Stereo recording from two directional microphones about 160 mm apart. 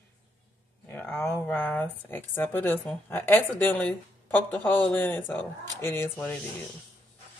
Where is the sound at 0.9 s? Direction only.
15° left (ahead or behind).